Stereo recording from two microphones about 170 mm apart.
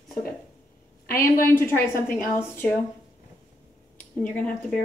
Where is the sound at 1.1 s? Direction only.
55° left (ahead or behind).